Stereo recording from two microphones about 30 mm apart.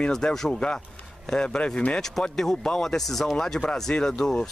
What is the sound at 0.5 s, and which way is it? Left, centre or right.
A man's voice, left.